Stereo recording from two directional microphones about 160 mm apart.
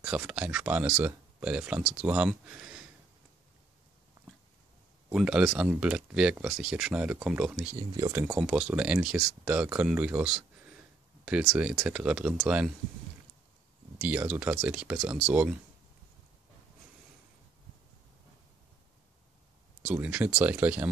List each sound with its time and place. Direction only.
0.0 s speech: 5° right (ahead or behind)
5.1 s speech: 5° right (ahead or behind)
7.7 s speech: 25° right (ahead or behind)
8.1 s speech: 10° right (ahead or behind)
13.9 s speech: 10° right (ahead or behind)
19.9 s speech: 10° right (ahead or behind)